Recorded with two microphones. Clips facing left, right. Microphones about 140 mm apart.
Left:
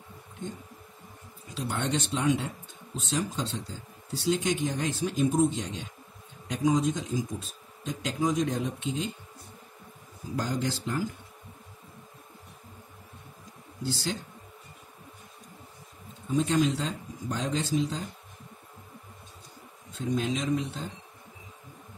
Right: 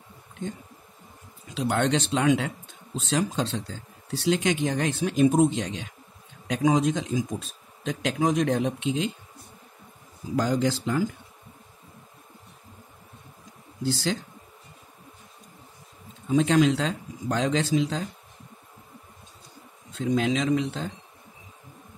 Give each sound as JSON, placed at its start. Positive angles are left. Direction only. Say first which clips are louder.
{"t": 1.5, "sound": "speech", "louder": "right 6 dB", "side_deg": -90}
{"t": 10.3, "sound": "speech", "louder": "right 6 dB", "side_deg": -90}
{"t": 16.3, "sound": "speech", "louder": "right 5 dB", "side_deg": -90}
{"t": 20.0, "sound": "speech", "louder": "right 5 dB", "side_deg": -90}